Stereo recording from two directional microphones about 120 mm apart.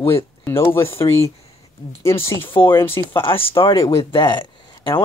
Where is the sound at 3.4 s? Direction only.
45° left (ahead or behind).